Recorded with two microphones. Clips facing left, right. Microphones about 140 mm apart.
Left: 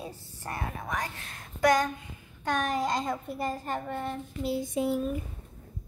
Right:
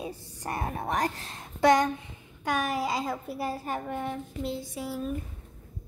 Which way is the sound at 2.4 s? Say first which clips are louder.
Even; 10° right (ahead or behind).